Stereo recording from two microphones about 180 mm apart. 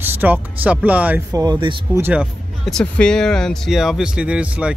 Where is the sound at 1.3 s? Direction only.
20° right (ahead or behind).